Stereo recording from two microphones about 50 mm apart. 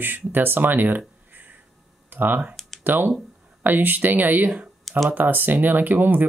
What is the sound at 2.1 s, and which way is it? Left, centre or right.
Speech, right.